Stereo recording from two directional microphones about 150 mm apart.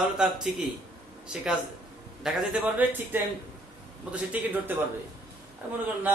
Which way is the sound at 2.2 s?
5° right (ahead or behind).